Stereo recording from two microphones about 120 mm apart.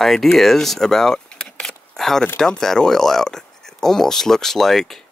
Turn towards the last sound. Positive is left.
turn(degrees=5)  # may be behind; listen again after turning